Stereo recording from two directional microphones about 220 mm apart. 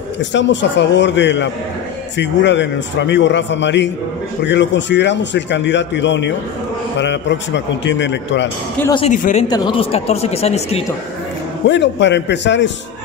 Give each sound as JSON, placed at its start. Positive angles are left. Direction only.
{"t": 0.2, "sound": "a man's voice", "side_deg": 55}
{"t": 8.9, "sound": "a man's voice", "side_deg": 30}
{"t": 11.6, "sound": "a man's voice", "side_deg": 55}